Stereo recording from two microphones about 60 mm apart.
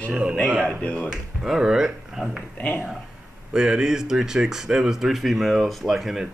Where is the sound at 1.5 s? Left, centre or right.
Centre.